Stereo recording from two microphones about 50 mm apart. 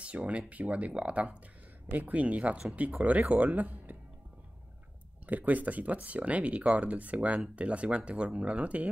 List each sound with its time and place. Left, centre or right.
0.0 s speech: right
5.2 s speech: right